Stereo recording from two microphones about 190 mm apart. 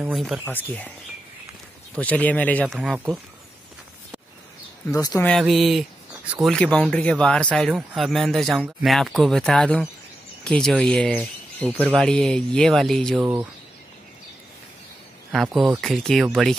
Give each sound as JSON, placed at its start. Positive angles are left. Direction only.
{"t": 0.1, "sound": "speech", "side_deg": 0}
{"t": 2.0, "sound": "speech", "side_deg": 5}
{"t": 4.9, "sound": "speech", "side_deg": 20}
{"t": 5.4, "sound": "speech", "side_deg": 0}
{"t": 11.7, "sound": "speech", "side_deg": -10}
{"t": 12.0, "sound": "speech", "side_deg": 5}
{"t": 13.2, "sound": "speech", "side_deg": -10}
{"t": 15.3, "sound": "speech", "side_deg": 0}